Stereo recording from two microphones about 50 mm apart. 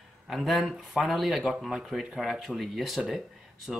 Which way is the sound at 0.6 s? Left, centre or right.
Centre.